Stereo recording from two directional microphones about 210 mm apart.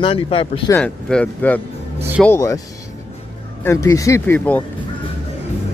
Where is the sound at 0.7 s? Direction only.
5° left (ahead or behind).